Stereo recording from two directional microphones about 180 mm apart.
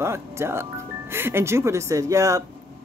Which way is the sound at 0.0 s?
15° right (ahead or behind).